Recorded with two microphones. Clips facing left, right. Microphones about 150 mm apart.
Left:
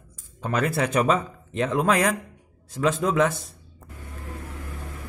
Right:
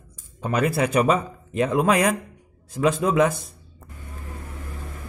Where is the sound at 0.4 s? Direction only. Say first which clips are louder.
Right 2 dB; 10° right (ahead or behind).